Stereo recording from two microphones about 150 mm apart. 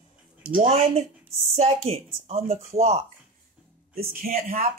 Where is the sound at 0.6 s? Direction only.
40° right (ahead or behind).